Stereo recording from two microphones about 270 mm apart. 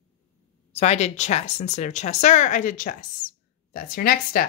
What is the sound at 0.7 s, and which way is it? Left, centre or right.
Speech, left.